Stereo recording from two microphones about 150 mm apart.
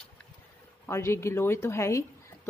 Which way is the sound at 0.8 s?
15° left (ahead or behind).